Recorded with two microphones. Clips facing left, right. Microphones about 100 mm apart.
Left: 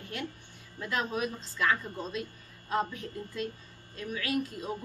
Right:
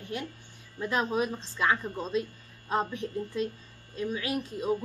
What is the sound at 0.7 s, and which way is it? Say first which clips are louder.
A woman's voice: right 4 dB; 25° right (ahead or behind).